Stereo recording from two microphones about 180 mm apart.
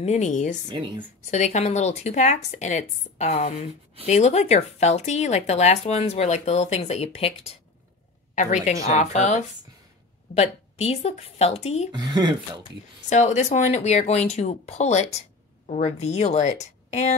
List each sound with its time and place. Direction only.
0.0 s speech: 40° left (ahead or behind)
0.7 s speech: 25° right (ahead or behind)
1.3 s speech: 40° left (ahead or behind)
11.9 s speech: 20° right (ahead or behind)
13.1 s speech: 40° left (ahead or behind)